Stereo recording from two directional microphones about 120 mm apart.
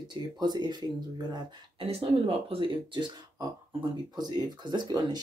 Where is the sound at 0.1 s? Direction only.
35° right (ahead or behind).